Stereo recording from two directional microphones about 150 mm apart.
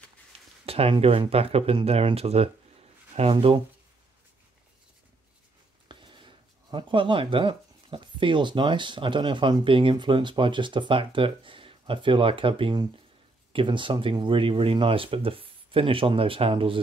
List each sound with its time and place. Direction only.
0.3 s a sound: 40° right (ahead or behind)
0.7 s speech: 40° right (ahead or behind)
5.9 s speech: 35° right (ahead or behind)